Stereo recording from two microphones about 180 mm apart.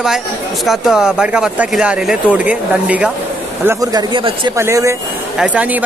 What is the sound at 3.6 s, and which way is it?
Speech, 20° right (ahead or behind).